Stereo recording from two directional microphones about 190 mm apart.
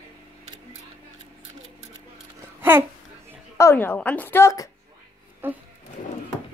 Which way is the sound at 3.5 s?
15° left (ahead or behind).